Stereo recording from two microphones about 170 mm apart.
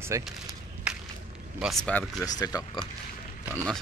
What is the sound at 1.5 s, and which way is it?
Speech, centre (ahead or behind).